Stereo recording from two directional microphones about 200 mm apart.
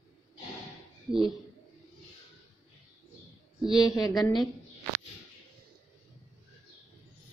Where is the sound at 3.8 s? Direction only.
20° left (ahead or behind).